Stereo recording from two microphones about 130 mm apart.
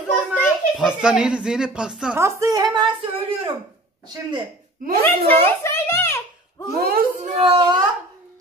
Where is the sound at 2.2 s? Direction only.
25° right (ahead or behind).